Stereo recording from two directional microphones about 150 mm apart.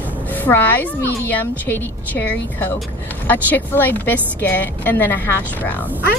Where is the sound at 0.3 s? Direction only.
10° left (ahead or behind).